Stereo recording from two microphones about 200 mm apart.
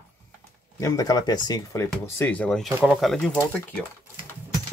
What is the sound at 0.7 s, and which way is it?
Speech, 15° left (ahead or behind).